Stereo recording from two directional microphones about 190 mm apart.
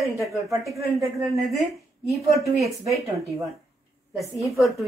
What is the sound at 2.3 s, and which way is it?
Speech, centre (ahead or behind).